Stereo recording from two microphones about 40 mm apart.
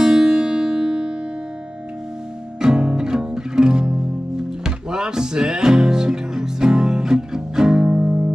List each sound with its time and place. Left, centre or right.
0.0 s music: centre
2.6 s music: right